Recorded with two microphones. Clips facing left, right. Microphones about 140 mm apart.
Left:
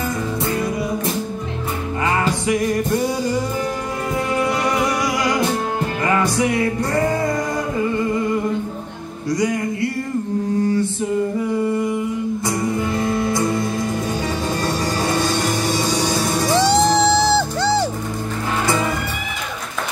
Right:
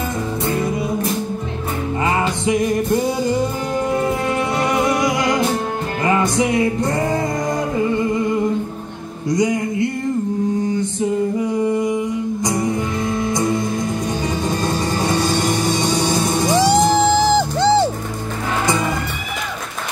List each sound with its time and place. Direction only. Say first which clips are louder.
2.4 s music: right 1 dB; 25° right (ahead or behind)
4.4 s music: left 1 dB; 25° right (ahead or behind)
9.3 s music: right 2 dB; 20° right (ahead or behind)
11.6 s a sound: right 2 dB; 15° right (ahead or behind)
16.2 s music: right 1 dB; 20° right (ahead or behind)